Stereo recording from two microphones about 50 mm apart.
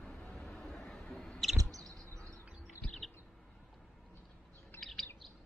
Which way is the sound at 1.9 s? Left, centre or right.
Right.